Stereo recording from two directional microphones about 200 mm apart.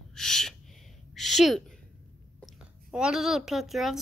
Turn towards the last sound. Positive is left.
turn(degrees=0)  # may be behind; listen again after turning